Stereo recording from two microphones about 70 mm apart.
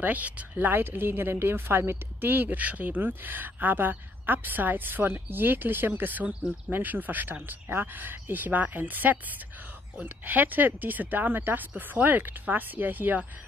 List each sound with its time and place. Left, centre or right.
0.0 s a woman's voice: right